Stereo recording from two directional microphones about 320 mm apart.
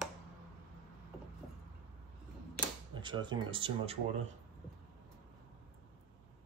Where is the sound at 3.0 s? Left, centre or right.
Centre.